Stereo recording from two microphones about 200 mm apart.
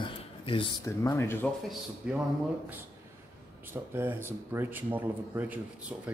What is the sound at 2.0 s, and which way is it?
Speech, 5° right (ahead or behind).